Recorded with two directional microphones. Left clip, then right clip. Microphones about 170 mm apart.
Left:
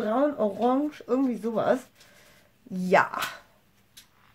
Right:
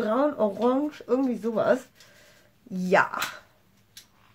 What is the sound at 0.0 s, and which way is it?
Speech, centre (ahead or behind).